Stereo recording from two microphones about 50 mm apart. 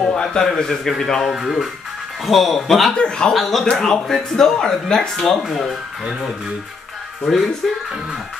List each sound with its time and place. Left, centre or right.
0.2 s speech: centre
1.2 s speech: centre
2.9 s speech: centre
3.3 s speech: centre
7.3 s speech: centre